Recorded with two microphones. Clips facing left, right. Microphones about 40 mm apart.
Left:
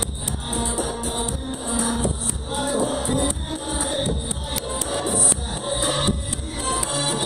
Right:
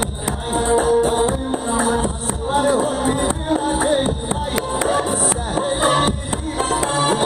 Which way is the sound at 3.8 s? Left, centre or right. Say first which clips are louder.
Right 7 dB; right.